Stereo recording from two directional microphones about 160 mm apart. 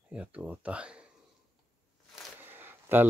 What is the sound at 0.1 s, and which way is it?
Speech, 5° right (ahead or behind).